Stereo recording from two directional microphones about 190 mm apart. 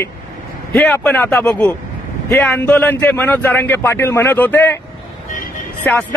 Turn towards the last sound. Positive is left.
turn(degrees=10)  # may be behind; listen again after turning